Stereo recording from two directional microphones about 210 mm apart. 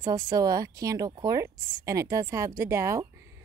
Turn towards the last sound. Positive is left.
turn(degrees=-15)  # may be behind; listen again after turning